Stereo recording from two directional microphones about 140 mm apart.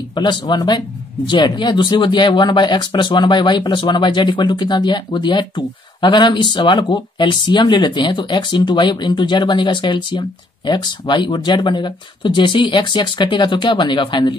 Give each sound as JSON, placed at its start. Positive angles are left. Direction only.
{"t": 0.1, "sound": "speech", "side_deg": 30}